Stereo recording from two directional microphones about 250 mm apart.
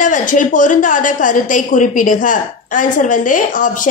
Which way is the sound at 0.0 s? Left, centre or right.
Left.